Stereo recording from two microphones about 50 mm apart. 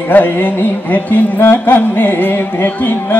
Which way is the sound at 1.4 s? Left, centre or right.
Left.